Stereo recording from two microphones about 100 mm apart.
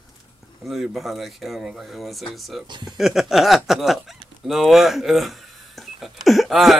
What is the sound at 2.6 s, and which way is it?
Speech, 50° right (ahead or behind).